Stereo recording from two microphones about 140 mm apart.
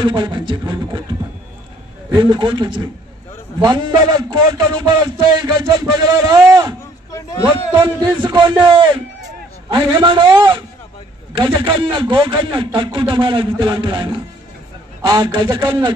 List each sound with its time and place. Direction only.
0.0 s a man's voice: 35° right (ahead or behind)
2.0 s a man's voice: 35° right (ahead or behind)
7.8 s a man's voice: 30° right (ahead or behind)